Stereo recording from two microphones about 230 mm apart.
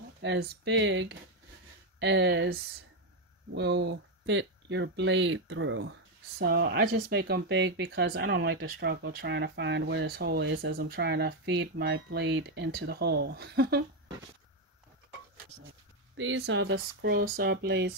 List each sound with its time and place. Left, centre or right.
0.2 s speech: right
6.3 s speech: right
16.2 s speech: right